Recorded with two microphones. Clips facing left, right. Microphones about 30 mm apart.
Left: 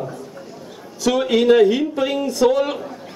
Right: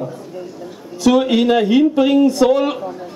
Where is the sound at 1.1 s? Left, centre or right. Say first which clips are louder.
Right 2 dB; centre.